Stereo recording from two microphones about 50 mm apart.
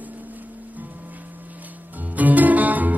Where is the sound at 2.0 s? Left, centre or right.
Right.